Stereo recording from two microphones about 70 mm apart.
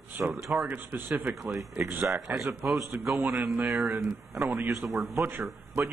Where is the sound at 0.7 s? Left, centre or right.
Right.